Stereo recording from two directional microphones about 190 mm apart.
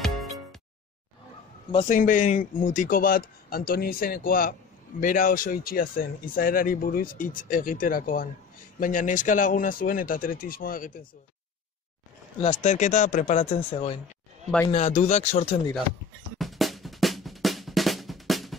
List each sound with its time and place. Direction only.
0.0 s music: centre (ahead or behind)
1.8 s speech: 45° left (ahead or behind)
12.4 s speech: 35° left (ahead or behind)
16.3 s drum: centre (ahead or behind)